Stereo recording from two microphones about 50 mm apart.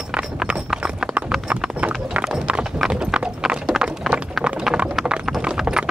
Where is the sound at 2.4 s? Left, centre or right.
Right.